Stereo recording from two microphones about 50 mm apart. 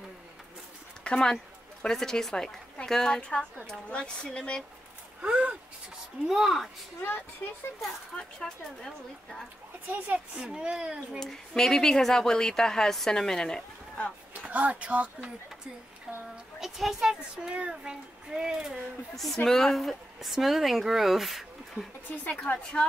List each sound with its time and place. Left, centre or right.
1.0 s a woman's voice: centre
3.2 s speech: left
5.2 s speech: right
6.2 s speech: centre
8.2 s speech: centre
9.8 s speech: right
10.3 s speech: right
11.1 s speech: centre
14.5 s speech: right
16.5 s a child's voice: centre
19.1 s speech: centre
22.1 s speech: left
22.5 s speech: left